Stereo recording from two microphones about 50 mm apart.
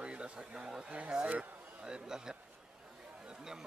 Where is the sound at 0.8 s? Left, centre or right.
Right.